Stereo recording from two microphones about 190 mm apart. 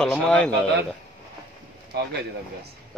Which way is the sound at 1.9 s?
60° right (ahead or behind).